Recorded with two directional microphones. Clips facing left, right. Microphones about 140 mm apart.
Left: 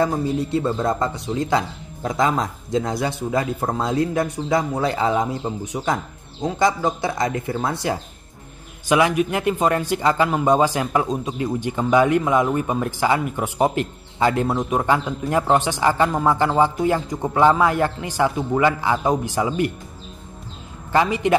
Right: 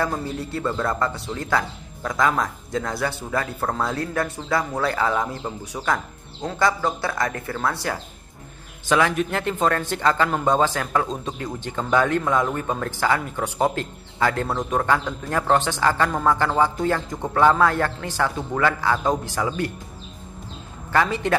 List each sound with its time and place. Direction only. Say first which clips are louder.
0.0 s speech: left 5 dB; 20° left (ahead or behind)
20.9 s speech: left 3 dB; 15° left (ahead or behind)